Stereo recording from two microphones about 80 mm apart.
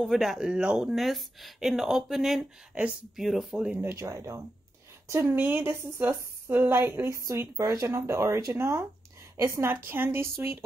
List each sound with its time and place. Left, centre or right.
0.0 s speech: centre
2.7 s speech: centre
3.2 s speech: centre
3.9 s a woman's voice: right
7.9 s a woman's voice: right